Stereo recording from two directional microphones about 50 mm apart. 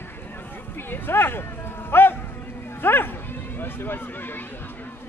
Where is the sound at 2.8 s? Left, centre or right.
Left.